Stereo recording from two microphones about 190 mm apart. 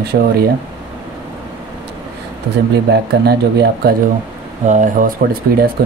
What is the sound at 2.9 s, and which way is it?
Speech, 60° right (ahead or behind).